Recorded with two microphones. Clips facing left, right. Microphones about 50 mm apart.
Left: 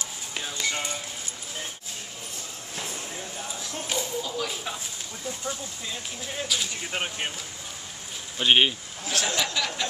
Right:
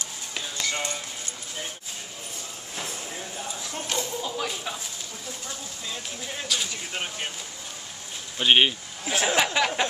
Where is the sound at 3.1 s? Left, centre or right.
Centre.